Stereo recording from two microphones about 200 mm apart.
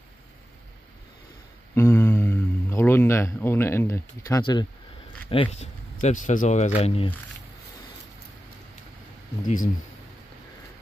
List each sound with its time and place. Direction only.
1.8 s speech: 10° left (ahead or behind); by 7.1 s 30° left (ahead or behind)